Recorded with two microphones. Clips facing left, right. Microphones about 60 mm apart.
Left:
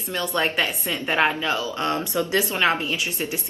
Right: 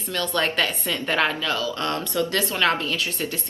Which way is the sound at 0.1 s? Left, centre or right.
Centre.